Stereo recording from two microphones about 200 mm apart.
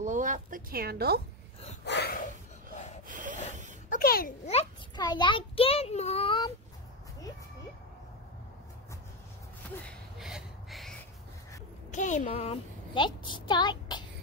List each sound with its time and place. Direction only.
0.0 s a woman's voice: 40° right (ahead or behind)
1.9 s speech: 55° left (ahead or behind)
3.1 s rub: 40° right (ahead or behind)
3.9 s a sound: 45° left (ahead or behind)
4.5 s a child's voice: 25° left (ahead or behind)
9.8 s a sound: centre (ahead or behind)
11.9 s a woman's voice: 35° left (ahead or behind); by 14.0 s 20° left (ahead or behind)